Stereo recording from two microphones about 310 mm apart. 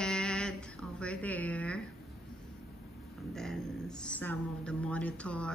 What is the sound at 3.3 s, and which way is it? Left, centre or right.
Speech, centre.